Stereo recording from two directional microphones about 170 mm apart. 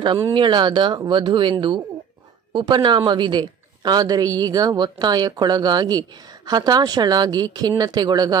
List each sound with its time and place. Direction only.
0.3 s a woman's voice: 25° right (ahead or behind)